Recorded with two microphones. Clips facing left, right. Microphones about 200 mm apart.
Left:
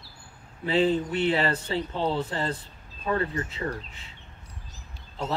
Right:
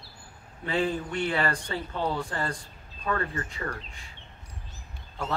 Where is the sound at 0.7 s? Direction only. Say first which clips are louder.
Left 5 dB; 20° left (ahead or behind).